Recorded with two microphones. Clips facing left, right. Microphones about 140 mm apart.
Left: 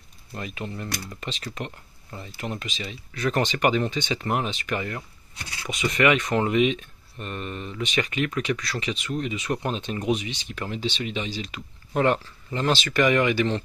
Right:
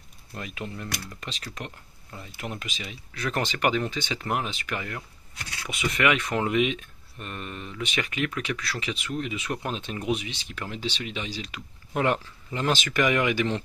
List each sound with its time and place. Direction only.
0.3 s speech: centre (ahead or behind)